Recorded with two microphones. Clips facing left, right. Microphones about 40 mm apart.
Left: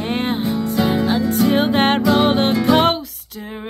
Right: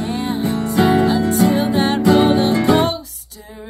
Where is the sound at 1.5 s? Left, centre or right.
Left.